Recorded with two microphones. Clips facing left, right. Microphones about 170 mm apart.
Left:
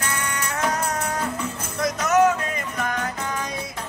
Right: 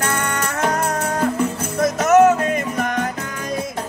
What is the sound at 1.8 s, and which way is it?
Music, 50° right (ahead or behind).